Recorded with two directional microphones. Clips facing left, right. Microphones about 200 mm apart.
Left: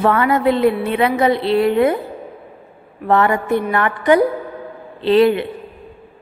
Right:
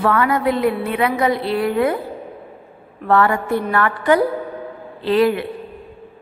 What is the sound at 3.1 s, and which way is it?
A woman's voice, 20° left (ahead or behind).